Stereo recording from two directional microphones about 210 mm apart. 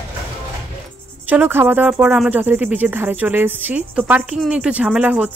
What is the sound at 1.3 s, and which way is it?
Speech, 10° right (ahead or behind).